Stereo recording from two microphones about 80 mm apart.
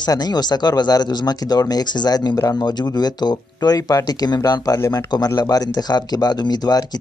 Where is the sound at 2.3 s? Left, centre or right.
Left.